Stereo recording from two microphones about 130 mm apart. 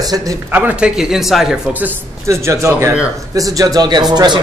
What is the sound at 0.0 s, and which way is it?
Speech, 30° right (ahead or behind).